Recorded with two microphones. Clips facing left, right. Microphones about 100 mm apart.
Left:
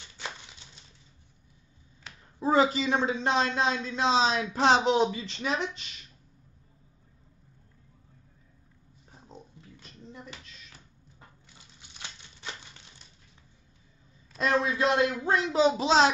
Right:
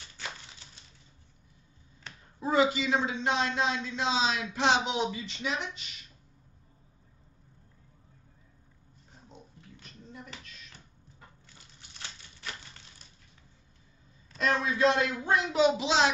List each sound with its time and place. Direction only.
2.4 s a man's voice: 35° left (ahead or behind)
12.0 s typewriter: 20° left (ahead or behind)
14.4 s a man's voice: 25° left (ahead or behind)